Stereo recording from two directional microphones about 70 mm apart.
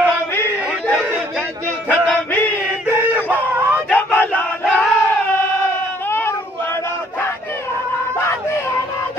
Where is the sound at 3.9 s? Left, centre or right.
Left.